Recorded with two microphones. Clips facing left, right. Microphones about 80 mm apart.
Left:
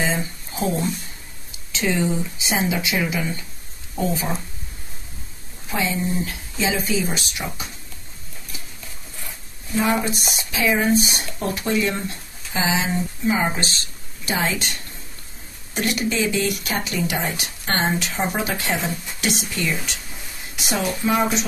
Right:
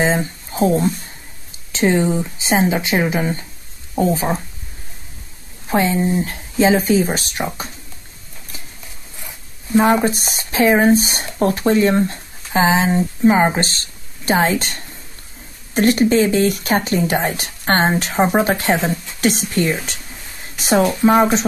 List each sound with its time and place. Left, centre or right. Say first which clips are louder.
0.0 s a sound: right 6 dB; right
1.7 s speech: right 6 dB; right
5.7 s speech: right 7 dB; right
9.8 s speech: right 6 dB; right